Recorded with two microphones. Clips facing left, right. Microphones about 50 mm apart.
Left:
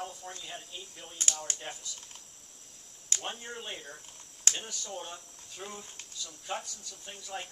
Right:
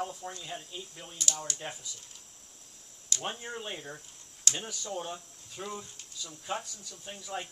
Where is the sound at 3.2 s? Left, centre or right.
Centre.